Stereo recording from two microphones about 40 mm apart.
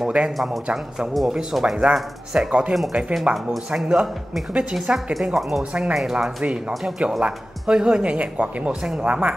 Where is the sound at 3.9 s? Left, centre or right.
Centre.